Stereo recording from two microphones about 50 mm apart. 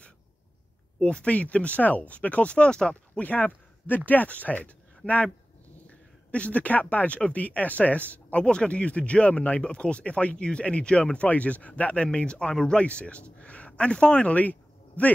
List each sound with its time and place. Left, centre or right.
1.0 s speech: left
3.2 s speech: left